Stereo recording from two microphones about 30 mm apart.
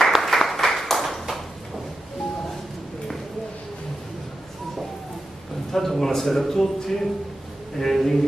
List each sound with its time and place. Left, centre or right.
0.2 s applause: centre
5.7 s a man's voice: centre